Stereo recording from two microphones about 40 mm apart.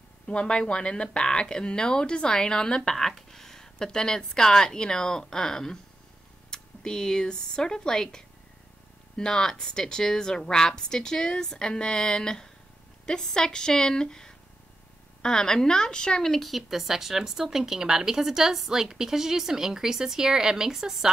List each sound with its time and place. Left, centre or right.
0.3 s speech: left
16.3 s speech: centre